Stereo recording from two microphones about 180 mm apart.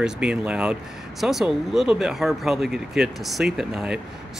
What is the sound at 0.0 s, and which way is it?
Speech, 5° right (ahead or behind).